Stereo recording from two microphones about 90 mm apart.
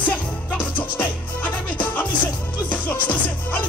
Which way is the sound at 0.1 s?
15° left (ahead or behind).